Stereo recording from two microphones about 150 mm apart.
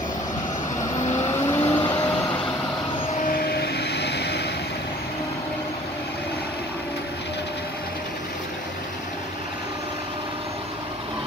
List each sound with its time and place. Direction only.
1.1 s vehicle: 15° left (ahead or behind)
3.3 s vehicle: 90° left